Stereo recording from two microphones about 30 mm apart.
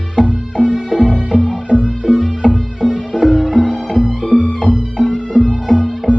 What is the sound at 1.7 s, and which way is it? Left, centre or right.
Music, left.